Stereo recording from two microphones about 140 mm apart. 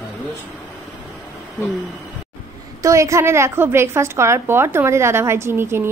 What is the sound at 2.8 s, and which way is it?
A woman's voice, 20° right (ahead or behind).